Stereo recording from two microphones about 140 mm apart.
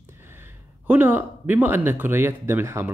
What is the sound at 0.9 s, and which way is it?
A man's voice, 15° right (ahead or behind).